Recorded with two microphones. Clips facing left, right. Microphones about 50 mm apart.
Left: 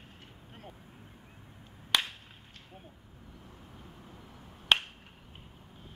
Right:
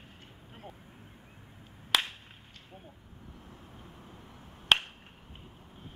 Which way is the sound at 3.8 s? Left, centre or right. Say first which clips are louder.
Even; right.